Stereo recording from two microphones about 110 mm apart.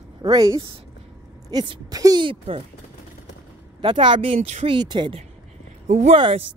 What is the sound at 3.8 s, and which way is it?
Speech, 50° right (ahead or behind).